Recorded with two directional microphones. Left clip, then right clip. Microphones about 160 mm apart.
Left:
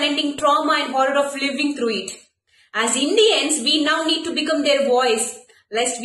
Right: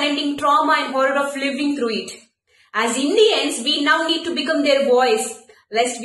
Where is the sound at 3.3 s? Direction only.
30° left (ahead or behind).